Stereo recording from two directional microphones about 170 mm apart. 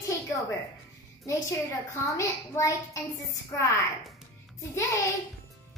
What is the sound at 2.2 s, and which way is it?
A child's voice, 20° left (ahead or behind).